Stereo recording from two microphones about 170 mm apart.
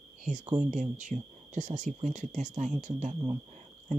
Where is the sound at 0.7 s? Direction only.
45° right (ahead or behind).